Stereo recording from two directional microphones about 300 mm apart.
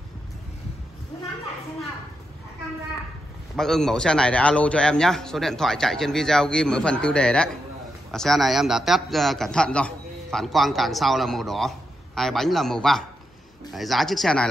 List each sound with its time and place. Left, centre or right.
3.5 s a man's voice: centre